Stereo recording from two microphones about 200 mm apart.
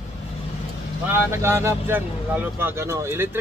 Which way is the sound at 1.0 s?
10° right (ahead or behind).